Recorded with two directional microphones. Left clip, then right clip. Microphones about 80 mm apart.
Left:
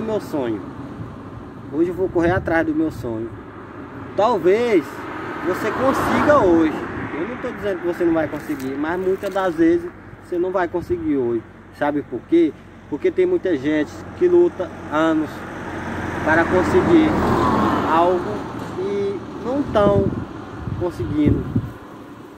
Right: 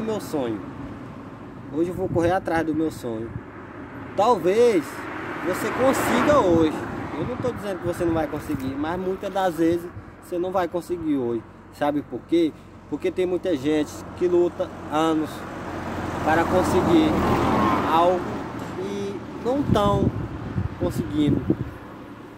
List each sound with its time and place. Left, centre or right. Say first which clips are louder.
0.0 s speech: left 3 dB; right
1.8 s speech: left 4 dB; right
4.2 s speech: left 1 dB; right
5.0 s vehicle: left 3 dB; centre
5.7 s speech: left 2 dB; centre
6.2 s speech: left 4 dB; right
15.1 s vehicle: left 3 dB; right
17.4 s vehicle: left 3 dB; left
17.8 s speech: left 3 dB; right
18.1 s a sound: left 4 dB; centre
18.9 s owl: left 7 dB; right
19.7 s speech: left 6 dB; right
20.8 s speech: left 3 dB; centre